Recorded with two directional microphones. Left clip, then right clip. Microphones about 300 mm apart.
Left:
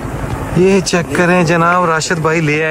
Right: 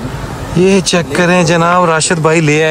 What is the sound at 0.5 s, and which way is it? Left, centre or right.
Speech, centre.